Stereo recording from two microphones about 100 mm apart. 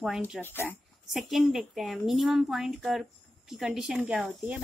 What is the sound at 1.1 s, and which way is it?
A woman's voice, centre (ahead or behind).